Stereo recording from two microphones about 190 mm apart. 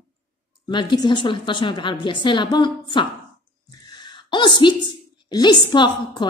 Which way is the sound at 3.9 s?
25° left (ahead or behind).